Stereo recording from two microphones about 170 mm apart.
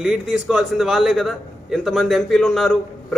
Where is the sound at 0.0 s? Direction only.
5° right (ahead or behind).